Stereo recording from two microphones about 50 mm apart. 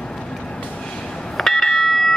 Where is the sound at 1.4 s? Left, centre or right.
Centre.